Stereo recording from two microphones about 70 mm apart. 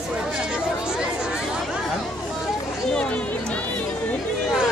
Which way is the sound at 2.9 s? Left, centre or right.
Centre.